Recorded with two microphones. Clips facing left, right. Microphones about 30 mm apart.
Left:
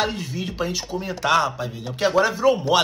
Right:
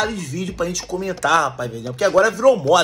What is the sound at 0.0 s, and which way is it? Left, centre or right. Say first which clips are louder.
A man's voice: right 2 dB; left.